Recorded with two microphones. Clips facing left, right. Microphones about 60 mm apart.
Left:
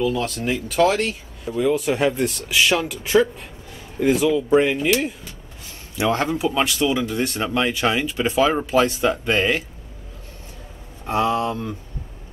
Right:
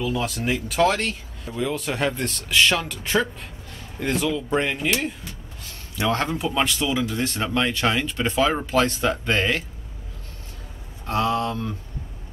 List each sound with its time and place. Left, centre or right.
0.0 s speech: centre
11.1 s speech: centre